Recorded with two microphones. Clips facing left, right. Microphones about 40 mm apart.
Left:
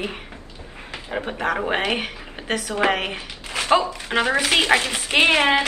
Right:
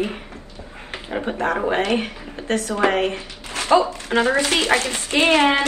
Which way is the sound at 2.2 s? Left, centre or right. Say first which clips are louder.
Right 3 dB; left.